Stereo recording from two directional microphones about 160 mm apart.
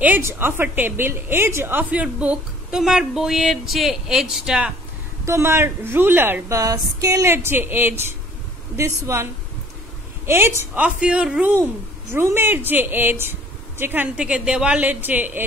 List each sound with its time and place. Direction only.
0.0 s speech: 15° right (ahead or behind)
5.2 s speech: 15° right (ahead or behind)